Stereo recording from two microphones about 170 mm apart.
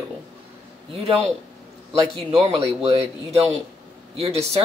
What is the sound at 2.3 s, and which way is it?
Speech, 35° right (ahead or behind).